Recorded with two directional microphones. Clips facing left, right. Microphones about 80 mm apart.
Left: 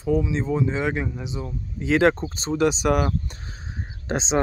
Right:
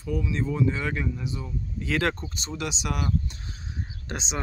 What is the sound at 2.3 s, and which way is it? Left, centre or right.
Speech, left.